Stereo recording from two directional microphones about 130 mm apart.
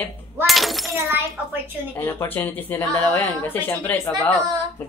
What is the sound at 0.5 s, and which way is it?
Breaking, centre (ahead or behind).